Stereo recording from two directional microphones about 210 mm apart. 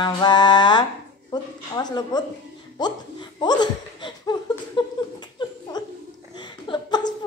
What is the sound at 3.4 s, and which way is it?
Laughter, 20° left (ahead or behind).